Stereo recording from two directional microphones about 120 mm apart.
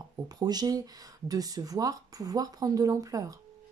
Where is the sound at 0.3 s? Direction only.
35° right (ahead or behind).